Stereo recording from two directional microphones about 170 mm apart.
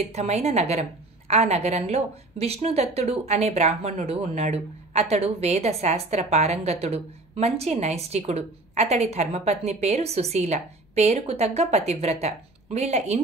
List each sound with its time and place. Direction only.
0.0 s a woman's voice: 40° right (ahead or behind)